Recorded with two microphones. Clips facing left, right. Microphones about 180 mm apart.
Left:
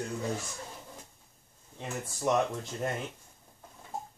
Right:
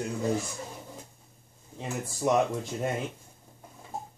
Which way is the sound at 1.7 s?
10° right (ahead or behind).